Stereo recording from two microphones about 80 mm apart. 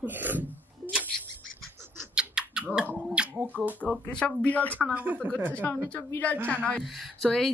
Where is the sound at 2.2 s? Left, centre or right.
Centre.